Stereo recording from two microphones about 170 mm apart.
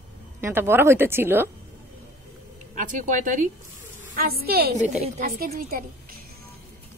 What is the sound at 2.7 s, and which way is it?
Speech, 50° right (ahead or behind).